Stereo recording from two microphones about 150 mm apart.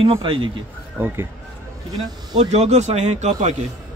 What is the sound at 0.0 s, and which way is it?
Speech, 35° right (ahead or behind).